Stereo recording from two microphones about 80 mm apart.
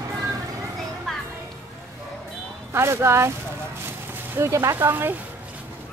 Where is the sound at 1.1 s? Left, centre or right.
Centre.